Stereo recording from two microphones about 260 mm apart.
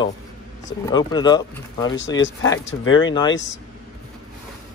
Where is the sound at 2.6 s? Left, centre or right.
Left.